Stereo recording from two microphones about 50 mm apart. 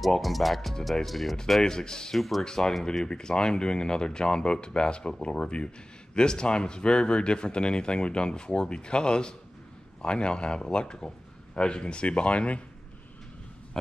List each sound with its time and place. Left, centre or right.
0.0 s speech: centre
1.6 s speech: centre
2.1 s speech: centre
2.4 s speech: centre
3.1 s a man's voice: centre